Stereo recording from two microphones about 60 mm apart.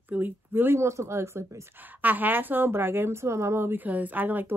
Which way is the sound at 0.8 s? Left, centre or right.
Right.